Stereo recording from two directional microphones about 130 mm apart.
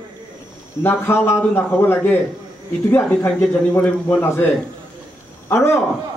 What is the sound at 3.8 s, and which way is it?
A man's voice, 15° left (ahead or behind).